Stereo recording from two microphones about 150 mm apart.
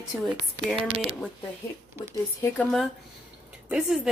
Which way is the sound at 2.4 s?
5° left (ahead or behind).